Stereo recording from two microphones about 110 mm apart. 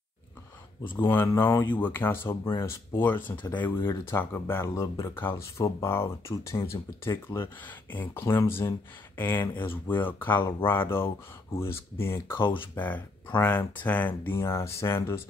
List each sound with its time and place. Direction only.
1.2 s speech: 30° left (ahead or behind)
1.6 s speech: 15° left (ahead or behind)